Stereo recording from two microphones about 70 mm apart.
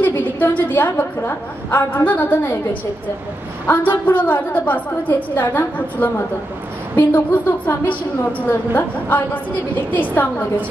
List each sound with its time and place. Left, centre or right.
0.0 s a woman's voice: left